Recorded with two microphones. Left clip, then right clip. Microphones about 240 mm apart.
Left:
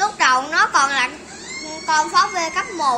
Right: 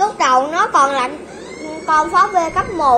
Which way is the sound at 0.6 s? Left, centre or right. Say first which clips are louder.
Right 2 dB; left.